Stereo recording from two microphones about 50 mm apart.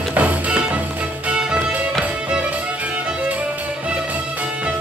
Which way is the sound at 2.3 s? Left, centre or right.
Right.